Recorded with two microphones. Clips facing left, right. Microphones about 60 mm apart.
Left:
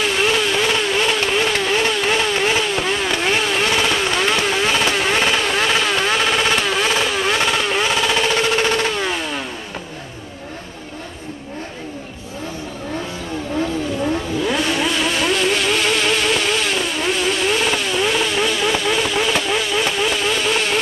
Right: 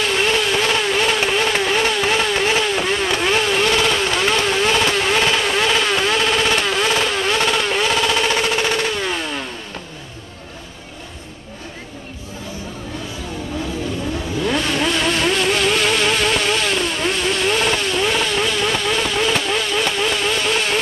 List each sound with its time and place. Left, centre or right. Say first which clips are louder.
0.0 s vehicle: even; centre
8.5 s a sound: left 1 dB; centre
14.4 s vehicle: right 2 dB; centre